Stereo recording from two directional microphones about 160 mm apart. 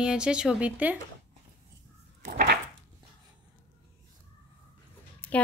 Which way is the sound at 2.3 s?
85° right.